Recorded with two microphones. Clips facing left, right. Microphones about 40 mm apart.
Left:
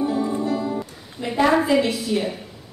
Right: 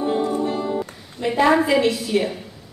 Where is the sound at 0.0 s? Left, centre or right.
Right.